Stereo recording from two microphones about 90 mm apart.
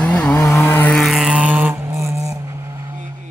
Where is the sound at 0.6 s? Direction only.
30° left (ahead or behind).